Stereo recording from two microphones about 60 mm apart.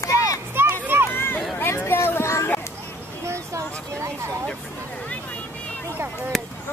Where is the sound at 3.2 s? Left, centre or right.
Right.